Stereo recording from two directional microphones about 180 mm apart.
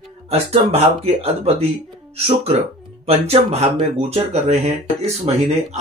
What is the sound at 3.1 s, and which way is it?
Speech, 35° right (ahead or behind).